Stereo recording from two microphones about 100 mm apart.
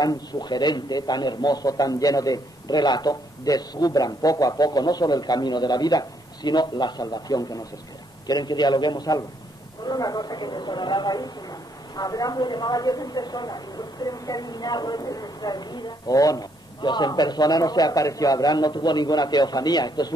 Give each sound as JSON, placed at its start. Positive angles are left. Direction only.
{"t": 0.0, "sound": "a man's voice", "side_deg": 45}